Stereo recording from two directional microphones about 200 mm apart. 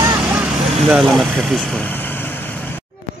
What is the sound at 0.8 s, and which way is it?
Vehicle, centre (ahead or behind).